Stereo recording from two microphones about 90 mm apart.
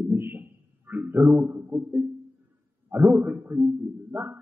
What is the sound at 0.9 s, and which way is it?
Music, 20° right (ahead or behind).